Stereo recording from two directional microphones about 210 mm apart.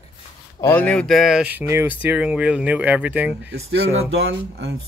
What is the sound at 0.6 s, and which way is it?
Speech, 10° left (ahead or behind).